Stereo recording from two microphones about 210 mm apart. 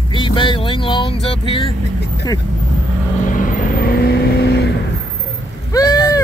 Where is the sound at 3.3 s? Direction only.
40° left (ahead or behind).